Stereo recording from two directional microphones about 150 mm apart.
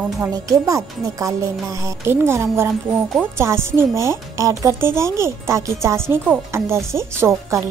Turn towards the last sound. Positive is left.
turn(degrees=-20)  # may be behind; listen again after turning